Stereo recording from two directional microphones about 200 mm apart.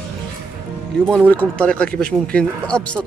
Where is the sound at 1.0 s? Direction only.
5° left (ahead or behind).